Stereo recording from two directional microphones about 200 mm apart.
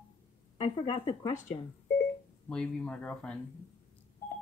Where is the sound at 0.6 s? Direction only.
25° left (ahead or behind).